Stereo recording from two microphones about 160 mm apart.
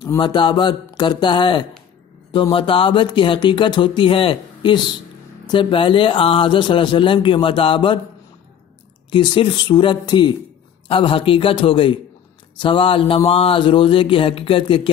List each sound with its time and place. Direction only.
0.2 s speech: 30° left (ahead or behind)
9.1 s speech: 30° left (ahead or behind)